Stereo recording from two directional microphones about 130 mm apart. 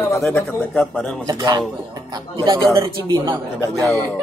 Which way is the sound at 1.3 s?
30° right (ahead or behind).